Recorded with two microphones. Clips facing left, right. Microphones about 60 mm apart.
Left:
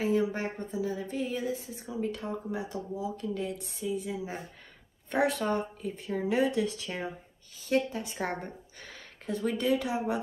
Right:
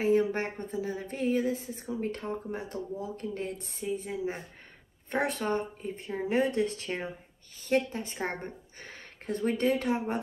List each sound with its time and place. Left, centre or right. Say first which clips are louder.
0.0 s speech: right 2 dB; right